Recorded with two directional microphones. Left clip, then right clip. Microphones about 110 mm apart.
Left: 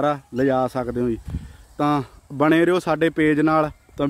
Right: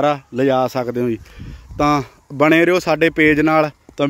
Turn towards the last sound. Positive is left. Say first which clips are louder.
# right 4 dB
turn(degrees=-5)  # may be behind; listen again after turning